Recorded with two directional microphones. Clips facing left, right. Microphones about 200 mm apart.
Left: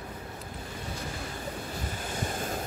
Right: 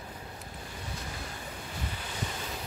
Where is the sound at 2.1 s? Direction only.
50° left (ahead or behind).